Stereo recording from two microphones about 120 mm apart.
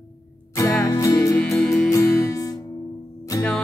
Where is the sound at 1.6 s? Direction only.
5° left (ahead or behind).